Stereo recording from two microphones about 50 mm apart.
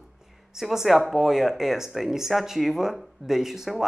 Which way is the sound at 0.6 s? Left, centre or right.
Centre.